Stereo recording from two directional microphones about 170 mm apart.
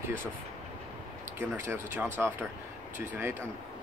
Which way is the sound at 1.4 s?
15° right (ahead or behind).